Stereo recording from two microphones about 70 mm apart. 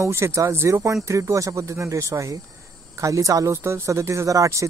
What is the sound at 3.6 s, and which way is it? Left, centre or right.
Speech, right.